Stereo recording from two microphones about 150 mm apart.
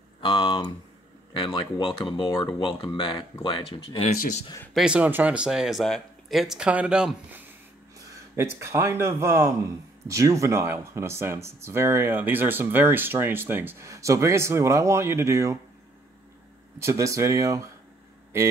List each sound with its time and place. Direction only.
0.2 s speech: 35° left (ahead or behind)
4.7 s speech: 5° right (ahead or behind)
16.8 s speech: 20° right (ahead or behind)